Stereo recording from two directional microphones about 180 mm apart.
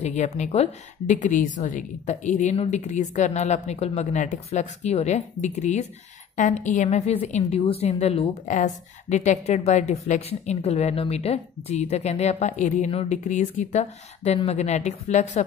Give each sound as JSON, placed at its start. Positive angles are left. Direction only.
{"t": 0.0, "sound": "a woman's voice", "side_deg": 40}